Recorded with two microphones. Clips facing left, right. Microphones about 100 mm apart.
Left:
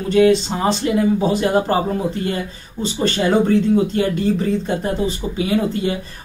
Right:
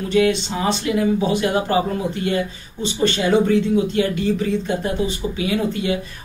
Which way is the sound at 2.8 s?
40° left (ahead or behind).